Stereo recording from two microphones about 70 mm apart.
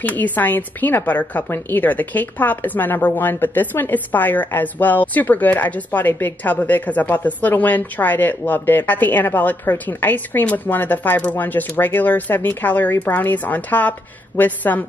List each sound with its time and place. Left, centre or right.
0.0 s a woman's voice: left